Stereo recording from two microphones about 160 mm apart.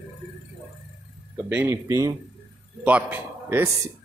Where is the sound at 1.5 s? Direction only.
15° right (ahead or behind).